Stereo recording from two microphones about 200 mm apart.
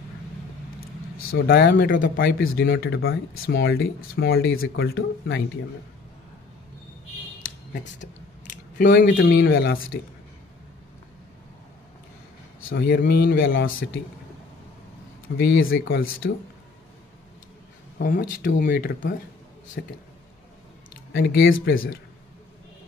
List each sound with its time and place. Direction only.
1.1 s vehicle: 90° left
1.5 s speech: 55° left (ahead or behind)
2.1 s speech: 70° left (ahead or behind)
3.0 s speech: 90° left
3.5 s speech: 75° left (ahead or behind)
4.3 s speech: 85° left
4.8 s speech: 55° left (ahead or behind)
8.7 s speech: 45° left (ahead or behind)
9.0 s speech: 65° left (ahead or behind)
12.7 s speech: 50° left (ahead or behind)
13.7 s speech: 80° left
15.3 s speech: 65° left (ahead or behind); by 16.3 s 85° left
17.9 s speech: 45° left (ahead or behind)
21.1 s speech: 70° left (ahead or behind)